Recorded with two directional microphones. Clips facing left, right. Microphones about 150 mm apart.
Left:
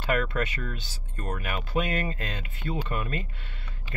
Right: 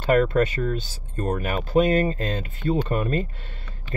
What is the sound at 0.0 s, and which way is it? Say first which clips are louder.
Speech: right 8 dB; 35° right (ahead or behind).